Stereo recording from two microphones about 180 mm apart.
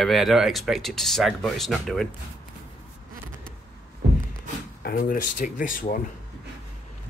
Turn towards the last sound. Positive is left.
turn(degrees=50)  # may be behind; listen again after turning